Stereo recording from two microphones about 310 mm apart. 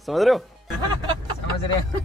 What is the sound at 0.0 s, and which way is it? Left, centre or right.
Speech, centre.